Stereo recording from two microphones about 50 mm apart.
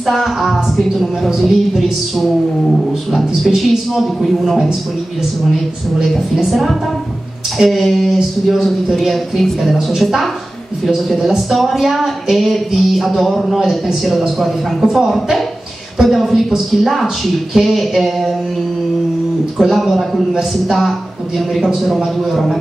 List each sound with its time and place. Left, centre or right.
0.0 s speech: centre
6.0 s speech: centre
19.6 s speech: centre
21.6 s speech: centre